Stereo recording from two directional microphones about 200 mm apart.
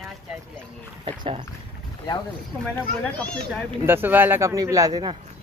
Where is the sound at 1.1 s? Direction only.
30° right (ahead or behind).